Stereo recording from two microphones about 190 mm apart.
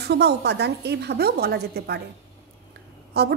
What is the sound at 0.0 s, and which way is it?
A woman's voice, 60° right (ahead or behind).